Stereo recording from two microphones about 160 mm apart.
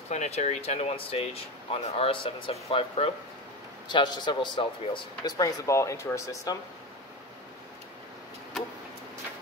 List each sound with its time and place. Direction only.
0.1 s speech: 45° left (ahead or behind); by 6.6 s 20° left (ahead or behind)